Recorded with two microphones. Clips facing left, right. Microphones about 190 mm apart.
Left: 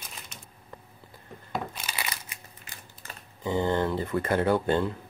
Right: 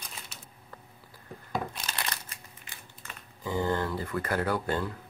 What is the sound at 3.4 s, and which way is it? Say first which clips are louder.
Speech: left 3 dB; 20° left (ahead or behind).